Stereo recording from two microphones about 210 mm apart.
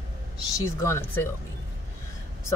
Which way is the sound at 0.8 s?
10° left (ahead or behind).